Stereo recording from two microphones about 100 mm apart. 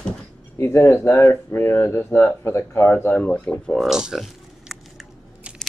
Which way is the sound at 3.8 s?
5° right (ahead or behind).